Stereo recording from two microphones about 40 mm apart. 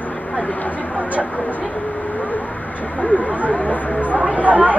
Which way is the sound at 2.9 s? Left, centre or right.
Left.